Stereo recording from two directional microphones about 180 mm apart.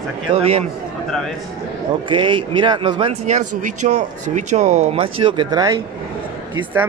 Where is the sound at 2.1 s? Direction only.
25° right (ahead or behind).